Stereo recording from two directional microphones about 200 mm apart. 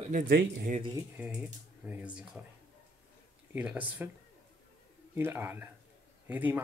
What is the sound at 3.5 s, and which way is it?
Speech, 5° right (ahead or behind).